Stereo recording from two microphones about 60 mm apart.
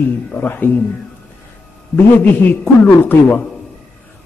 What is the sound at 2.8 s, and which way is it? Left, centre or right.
Speech, left.